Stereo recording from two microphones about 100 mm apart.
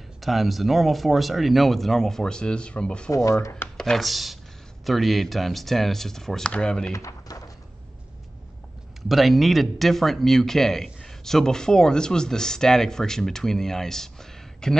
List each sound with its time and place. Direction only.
0.2 s speech: centre (ahead or behind)
3.1 s speech: 35° left (ahead or behind)
3.3 s chopping: 25° left (ahead or behind)
3.6 s speech: 5° left (ahead or behind)
6.9 s a sound: 30° left (ahead or behind)
9.1 s speech: centre (ahead or behind)